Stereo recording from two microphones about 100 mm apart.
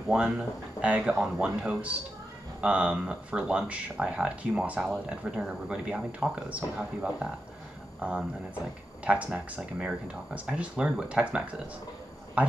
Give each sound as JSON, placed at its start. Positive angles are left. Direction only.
{"t": 0.1, "sound": "speech", "side_deg": -10}